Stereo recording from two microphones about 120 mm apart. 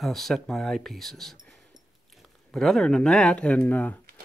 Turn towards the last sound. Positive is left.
turn(degrees=10)  # may be behind; listen again after turning